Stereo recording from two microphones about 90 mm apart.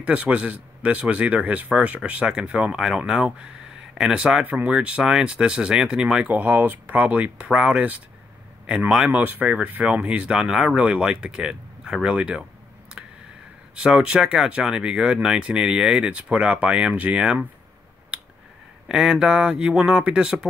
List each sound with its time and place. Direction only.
0.0 s speech: 15° right (ahead or behind)
13.7 s speech: 10° right (ahead or behind)
18.1 s finger snapping: 10° right (ahead or behind)
18.9 s speech: 5° right (ahead or behind)